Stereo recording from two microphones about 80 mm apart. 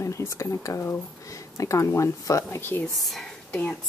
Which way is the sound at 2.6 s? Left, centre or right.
Left.